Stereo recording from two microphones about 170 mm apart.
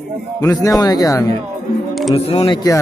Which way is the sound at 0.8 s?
20° left (ahead or behind).